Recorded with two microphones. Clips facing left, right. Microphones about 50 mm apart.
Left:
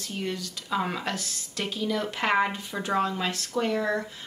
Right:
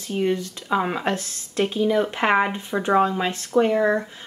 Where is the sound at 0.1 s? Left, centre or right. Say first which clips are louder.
Right 10 dB; right.